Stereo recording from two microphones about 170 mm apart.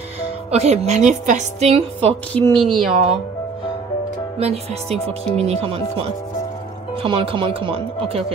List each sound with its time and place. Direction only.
0.5 s speech: 40° right (ahead or behind)
2.3 s speech: 5° left (ahead or behind)
4.4 s speech: 40° right (ahead or behind)